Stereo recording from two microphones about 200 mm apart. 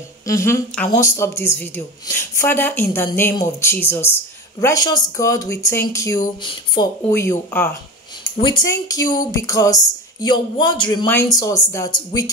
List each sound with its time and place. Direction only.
0.3 s speech: 15° left (ahead or behind)
8.4 s speech: 25° left (ahead or behind)